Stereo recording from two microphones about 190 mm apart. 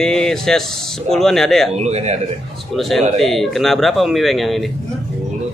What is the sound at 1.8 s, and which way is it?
Speech, 35° right (ahead or behind).